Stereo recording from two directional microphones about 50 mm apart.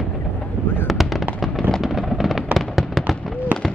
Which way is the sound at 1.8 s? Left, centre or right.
Centre.